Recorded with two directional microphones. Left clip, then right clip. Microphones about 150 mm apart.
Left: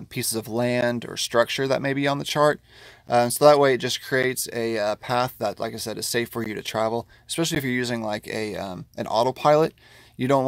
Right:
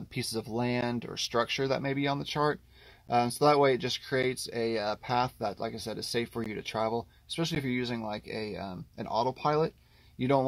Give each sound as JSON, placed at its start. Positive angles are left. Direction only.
{"t": 0.1, "sound": "speech", "side_deg": 30}
{"t": 10.1, "sound": "speech", "side_deg": 40}